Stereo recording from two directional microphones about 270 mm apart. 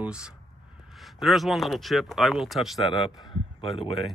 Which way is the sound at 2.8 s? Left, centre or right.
Centre.